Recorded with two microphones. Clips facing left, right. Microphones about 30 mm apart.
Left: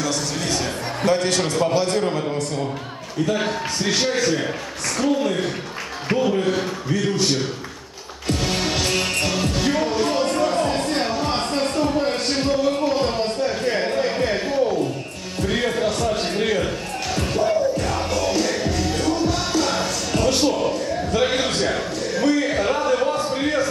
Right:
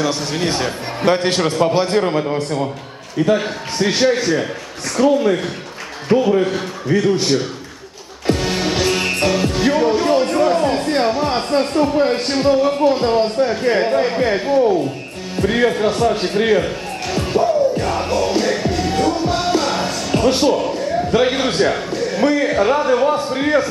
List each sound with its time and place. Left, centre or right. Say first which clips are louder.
0.0 s a man's voice: right 5 dB; right
1.4 s a man's voice: right 4 dB; right
8.3 s music: right 4 dB; centre
12.0 s a sound: right 5 dB; centre
15.4 s a man's voice: right 6 dB; right
16.6 s music: right 2 dB; centre
20.7 s a man's voice: right 5 dB; right
22.6 s a sound: right 5 dB; centre